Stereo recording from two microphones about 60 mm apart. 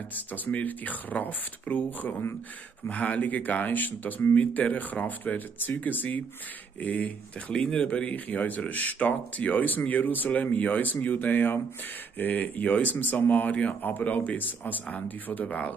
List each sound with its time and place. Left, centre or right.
0.1 s speech: left